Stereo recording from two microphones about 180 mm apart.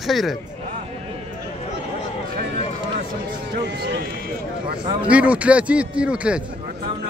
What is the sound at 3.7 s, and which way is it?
Run, 70° right (ahead or behind).